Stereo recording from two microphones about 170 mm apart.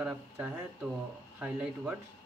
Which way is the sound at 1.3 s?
10° right (ahead or behind).